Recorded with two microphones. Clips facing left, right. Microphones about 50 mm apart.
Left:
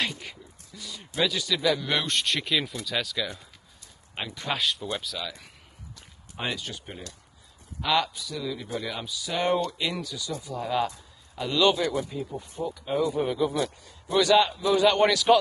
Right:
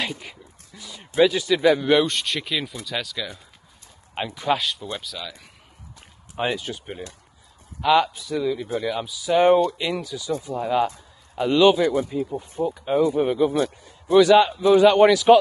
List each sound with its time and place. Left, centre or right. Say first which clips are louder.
0.1 s a sound: right 5 dB; centre
0.7 s speech: right 9 dB; right
2.0 s speech: right 6 dB; centre
4.1 s speech: right 8 dB; centre
5.9 s a sound: right 9 dB; centre
7.8 s speech: right 7 dB; centre
8.1 s speech: right 9 dB; right
8.8 s speech: right 7 dB; centre
9.3 s speech: right 9 dB; centre
11.3 s speech: right 8 dB; right
11.6 s speech: right 6 dB; centre
14.9 s speech: right 5 dB; centre